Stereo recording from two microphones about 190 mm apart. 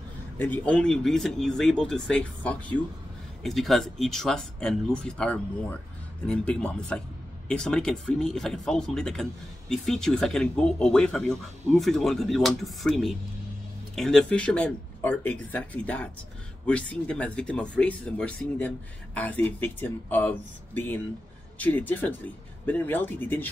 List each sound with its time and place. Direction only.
0.4 s speech: 10° left (ahead or behind)